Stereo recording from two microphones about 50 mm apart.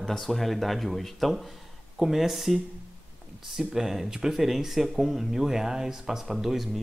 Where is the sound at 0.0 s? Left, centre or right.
Centre.